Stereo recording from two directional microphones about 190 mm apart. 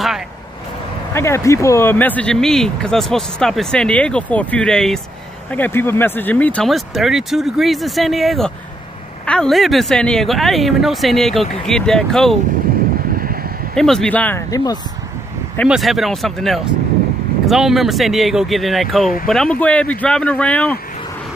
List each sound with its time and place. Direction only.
1.1 s speech: 15° left (ahead or behind)
13.7 s speech: 5° left (ahead or behind)
14.5 s speech: 20° left (ahead or behind)
15.7 s speech: centre (ahead or behind)